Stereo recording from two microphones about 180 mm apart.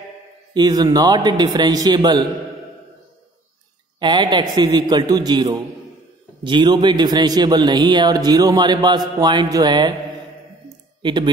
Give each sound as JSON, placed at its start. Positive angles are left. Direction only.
{"t": 0.6, "sound": "a man's voice", "side_deg": -25}
{"t": 4.0, "sound": "a man's voice", "side_deg": -25}
{"t": 11.0, "sound": "speech", "side_deg": -25}